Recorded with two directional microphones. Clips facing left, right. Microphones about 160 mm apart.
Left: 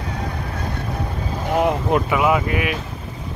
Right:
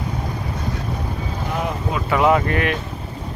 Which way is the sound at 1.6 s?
60° left (ahead or behind).